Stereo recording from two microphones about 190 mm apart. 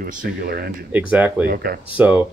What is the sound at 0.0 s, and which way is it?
Speech, 50° right (ahead or behind).